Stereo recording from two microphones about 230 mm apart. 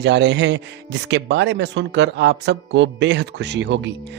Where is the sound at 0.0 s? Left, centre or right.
Right.